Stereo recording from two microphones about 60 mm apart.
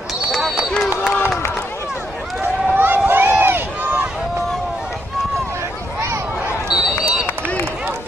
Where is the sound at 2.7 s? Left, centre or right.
Right.